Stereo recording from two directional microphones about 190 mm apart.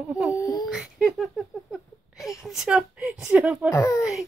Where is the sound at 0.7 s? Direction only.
5° right (ahead or behind).